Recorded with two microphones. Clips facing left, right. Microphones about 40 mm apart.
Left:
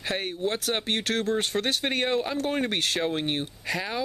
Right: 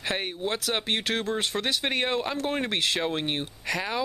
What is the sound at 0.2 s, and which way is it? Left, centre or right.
Speech, right.